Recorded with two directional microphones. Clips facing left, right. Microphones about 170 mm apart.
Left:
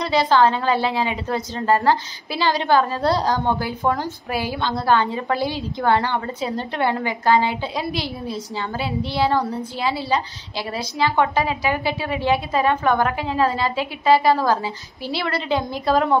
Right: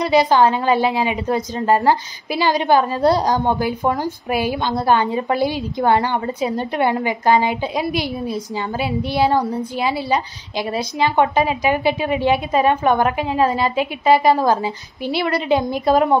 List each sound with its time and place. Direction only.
0.0 s a woman's voice: 15° right (ahead or behind)